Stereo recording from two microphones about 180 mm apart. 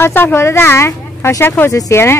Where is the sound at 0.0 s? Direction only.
10° left (ahead or behind).